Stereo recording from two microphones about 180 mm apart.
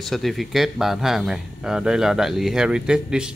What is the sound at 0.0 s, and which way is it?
Speech, centre (ahead or behind).